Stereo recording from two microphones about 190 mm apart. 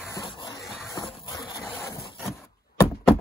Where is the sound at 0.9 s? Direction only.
25° left (ahead or behind).